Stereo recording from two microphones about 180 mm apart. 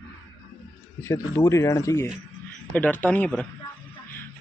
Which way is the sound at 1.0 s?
15° left (ahead or behind).